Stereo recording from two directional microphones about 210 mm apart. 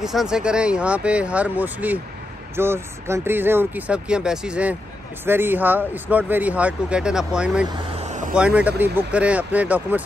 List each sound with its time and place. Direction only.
0.0 s speech: centre (ahead or behind)
8.0 s vehicle: 35° right (ahead or behind)
8.4 s speech: 5° right (ahead or behind)